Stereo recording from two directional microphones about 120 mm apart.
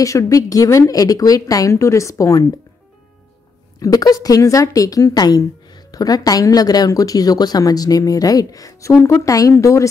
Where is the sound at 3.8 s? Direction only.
30° left (ahead or behind).